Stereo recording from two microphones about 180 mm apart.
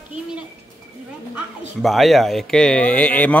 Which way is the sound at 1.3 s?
Centre (ahead or behind).